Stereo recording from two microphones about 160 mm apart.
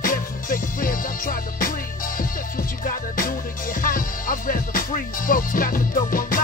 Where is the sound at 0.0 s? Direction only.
60° left (ahead or behind).